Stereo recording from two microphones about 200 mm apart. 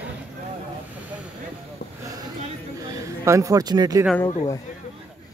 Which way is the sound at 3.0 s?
15° right (ahead or behind).